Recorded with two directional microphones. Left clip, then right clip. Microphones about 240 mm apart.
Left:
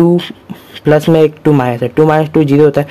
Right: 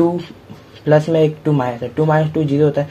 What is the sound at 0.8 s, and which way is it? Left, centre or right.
Speech, left.